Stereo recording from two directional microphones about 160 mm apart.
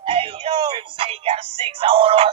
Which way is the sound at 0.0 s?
35° right (ahead or behind).